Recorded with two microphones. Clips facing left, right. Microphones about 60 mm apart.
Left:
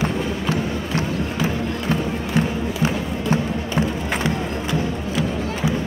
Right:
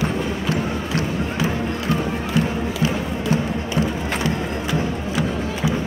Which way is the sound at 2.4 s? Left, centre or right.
Left.